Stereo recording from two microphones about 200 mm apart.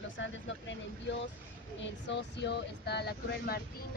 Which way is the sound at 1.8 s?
60° left (ahead or behind).